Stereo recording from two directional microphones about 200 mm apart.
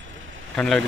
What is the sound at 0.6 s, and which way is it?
Speech, 5° left (ahead or behind).